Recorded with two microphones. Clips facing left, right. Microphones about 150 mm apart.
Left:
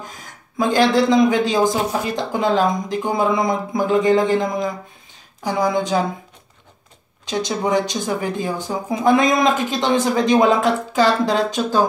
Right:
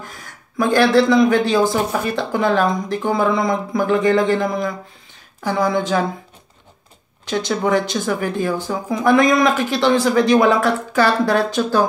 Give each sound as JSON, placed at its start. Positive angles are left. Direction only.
{"t": 0.0, "sound": "a man's voice", "side_deg": 20}
{"t": 5.4, "sound": "a man's voice", "side_deg": 15}
{"t": 7.2, "sound": "a man's voice", "side_deg": 15}